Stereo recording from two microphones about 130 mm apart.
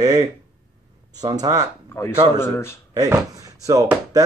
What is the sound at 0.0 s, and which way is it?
Speech, 30° right (ahead or behind).